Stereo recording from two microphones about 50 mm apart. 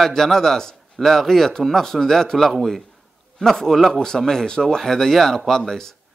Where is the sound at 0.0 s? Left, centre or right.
Centre.